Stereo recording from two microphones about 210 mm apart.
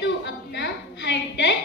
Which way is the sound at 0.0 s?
55° left (ahead or behind).